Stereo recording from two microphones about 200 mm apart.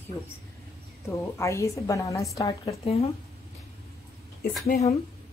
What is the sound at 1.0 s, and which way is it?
A woman's voice, 15° left (ahead or behind).